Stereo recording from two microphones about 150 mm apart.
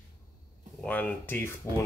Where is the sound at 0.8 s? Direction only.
10° left (ahead or behind).